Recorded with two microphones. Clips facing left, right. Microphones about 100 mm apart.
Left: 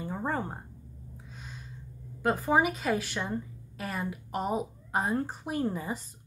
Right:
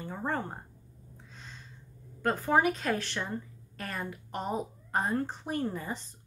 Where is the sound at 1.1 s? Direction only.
10° left (ahead or behind).